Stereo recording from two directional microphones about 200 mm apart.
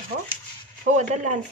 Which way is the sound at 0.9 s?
35° right (ahead or behind).